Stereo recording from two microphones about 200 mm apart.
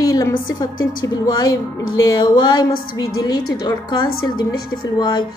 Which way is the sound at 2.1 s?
20° left (ahead or behind).